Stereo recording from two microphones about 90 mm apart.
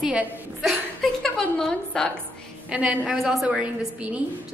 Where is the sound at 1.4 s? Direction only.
10° left (ahead or behind).